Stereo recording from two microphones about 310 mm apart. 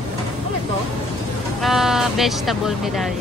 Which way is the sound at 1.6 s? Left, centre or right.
Centre.